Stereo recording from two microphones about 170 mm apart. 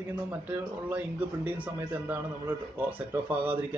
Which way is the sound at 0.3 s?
10° right (ahead or behind).